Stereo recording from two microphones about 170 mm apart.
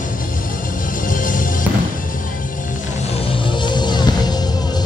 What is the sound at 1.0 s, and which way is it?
Music, 50° left (ahead or behind).